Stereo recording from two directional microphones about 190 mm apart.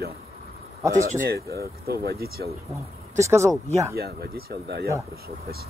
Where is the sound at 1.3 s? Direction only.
55° right (ahead or behind).